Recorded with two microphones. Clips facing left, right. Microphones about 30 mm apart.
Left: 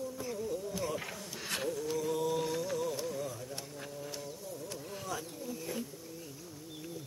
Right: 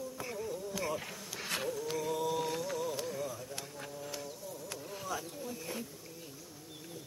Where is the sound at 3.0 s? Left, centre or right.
Centre.